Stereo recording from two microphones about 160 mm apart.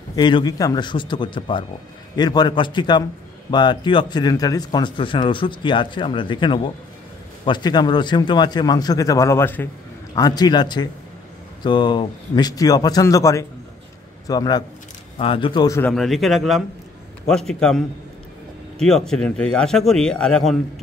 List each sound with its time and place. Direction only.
0.1 s a man's voice: 30° left (ahead or behind)
10.1 s a man's voice: 25° left (ahead or behind)
15.8 s speech: centre (ahead or behind)